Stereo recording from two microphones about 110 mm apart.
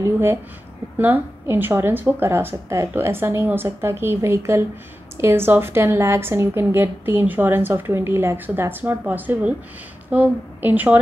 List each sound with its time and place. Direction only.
0.0 s a woman's voice: 20° right (ahead or behind)